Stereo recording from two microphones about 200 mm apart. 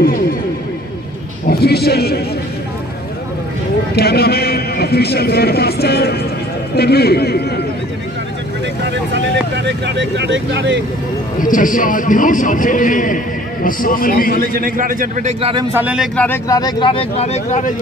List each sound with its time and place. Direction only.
1.5 s a sound: 50° left (ahead or behind)
3.9 s a sound: 50° left (ahead or behind)
6.7 s a man's voice: 50° left (ahead or behind)
9.7 s speech: 60° right (ahead or behind)
11.3 s a man's voice: 40° left (ahead or behind)
14.5 s a man's voice: 45° right (ahead or behind)
15.7 s a man's voice: 5° right (ahead or behind)
16.2 s speech: 15° left (ahead or behind); by 17.7 s 35° left (ahead or behind)